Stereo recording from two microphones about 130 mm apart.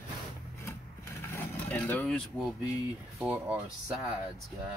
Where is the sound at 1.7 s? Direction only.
10° left (ahead or behind).